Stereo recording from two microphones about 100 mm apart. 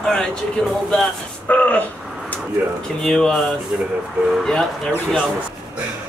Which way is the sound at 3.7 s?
15° right (ahead or behind).